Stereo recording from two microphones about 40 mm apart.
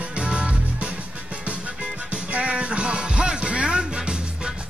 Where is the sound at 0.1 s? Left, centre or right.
Right.